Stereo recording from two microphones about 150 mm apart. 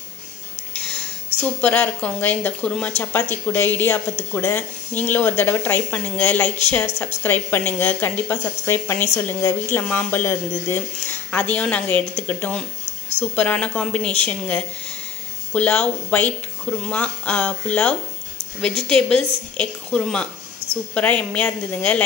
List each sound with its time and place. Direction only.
1.6 s a woman's voice: 10° left (ahead or behind)
15.5 s a woman's voice: 10° left (ahead or behind)